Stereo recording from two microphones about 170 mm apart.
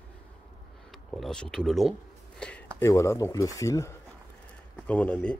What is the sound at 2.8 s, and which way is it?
Speech, 20° left (ahead or behind).